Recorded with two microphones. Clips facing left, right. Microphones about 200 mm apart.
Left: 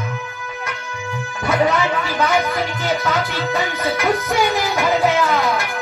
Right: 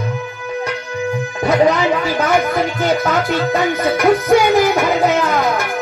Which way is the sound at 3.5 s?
50° right (ahead or behind).